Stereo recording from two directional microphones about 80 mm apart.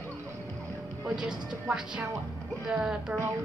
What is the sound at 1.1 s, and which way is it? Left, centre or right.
A woman's voice, centre.